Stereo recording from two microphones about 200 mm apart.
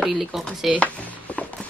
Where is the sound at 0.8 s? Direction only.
5° left (ahead or behind).